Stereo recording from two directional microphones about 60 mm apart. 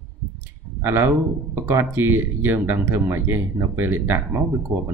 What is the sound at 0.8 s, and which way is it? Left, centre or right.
Speech, right.